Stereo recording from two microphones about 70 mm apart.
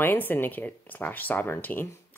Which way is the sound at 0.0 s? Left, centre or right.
Left.